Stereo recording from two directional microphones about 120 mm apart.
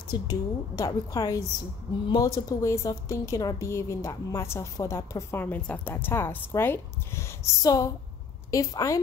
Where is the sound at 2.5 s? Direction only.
25° left (ahead or behind).